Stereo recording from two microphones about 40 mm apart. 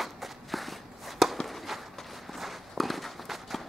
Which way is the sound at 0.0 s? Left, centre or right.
Centre.